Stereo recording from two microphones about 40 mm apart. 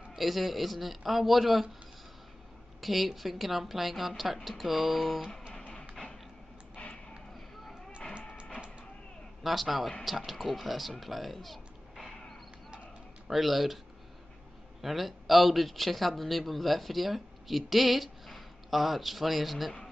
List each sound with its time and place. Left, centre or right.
0.1 s speech: centre
2.8 s speech: centre
6.0 s creak: centre
8.4 s music: right
9.4 s speech: centre
14.8 s speech: centre